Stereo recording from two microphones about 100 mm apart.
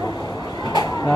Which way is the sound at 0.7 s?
45° left (ahead or behind).